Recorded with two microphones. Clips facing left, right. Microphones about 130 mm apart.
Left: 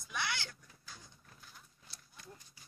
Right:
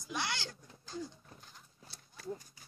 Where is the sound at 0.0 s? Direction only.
15° right (ahead or behind).